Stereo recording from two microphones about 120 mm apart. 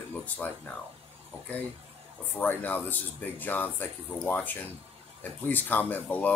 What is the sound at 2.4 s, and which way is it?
Speech, 15° left (ahead or behind).